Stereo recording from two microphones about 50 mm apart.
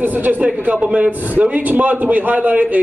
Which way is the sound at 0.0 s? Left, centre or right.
Right.